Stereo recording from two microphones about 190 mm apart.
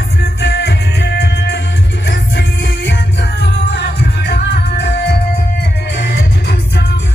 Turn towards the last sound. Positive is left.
turn(degrees=60)  # may be behind; listen again after turning